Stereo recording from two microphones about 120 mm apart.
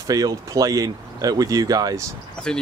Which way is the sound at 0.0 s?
30° right (ahead or behind).